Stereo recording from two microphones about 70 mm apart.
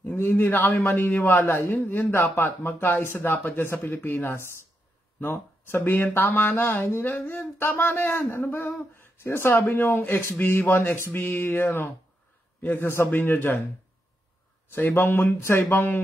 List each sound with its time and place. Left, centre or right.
0.0 s speech: left
1.4 s speech: left
14.7 s speech: left